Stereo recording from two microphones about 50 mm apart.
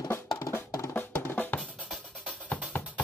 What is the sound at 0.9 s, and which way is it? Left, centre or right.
Drum, left.